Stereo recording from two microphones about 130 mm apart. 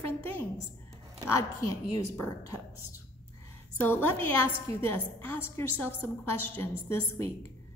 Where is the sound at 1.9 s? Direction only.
20° left (ahead or behind).